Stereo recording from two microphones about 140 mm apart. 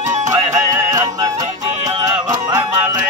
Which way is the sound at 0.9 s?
25° right (ahead or behind).